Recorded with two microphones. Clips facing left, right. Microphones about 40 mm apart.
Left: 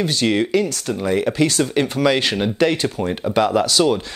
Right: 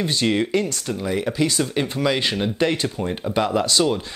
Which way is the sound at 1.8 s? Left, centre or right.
Left.